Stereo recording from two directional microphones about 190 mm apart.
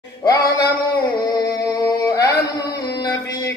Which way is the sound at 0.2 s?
15° left (ahead or behind).